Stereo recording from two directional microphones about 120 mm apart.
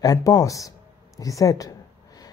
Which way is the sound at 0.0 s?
30° left (ahead or behind).